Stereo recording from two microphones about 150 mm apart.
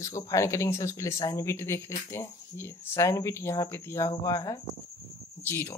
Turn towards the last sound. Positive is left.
turn(degrees=15)  # may be behind; listen again after turning